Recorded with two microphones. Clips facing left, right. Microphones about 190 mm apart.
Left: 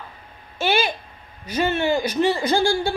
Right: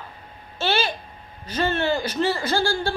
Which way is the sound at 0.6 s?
15° left (ahead or behind).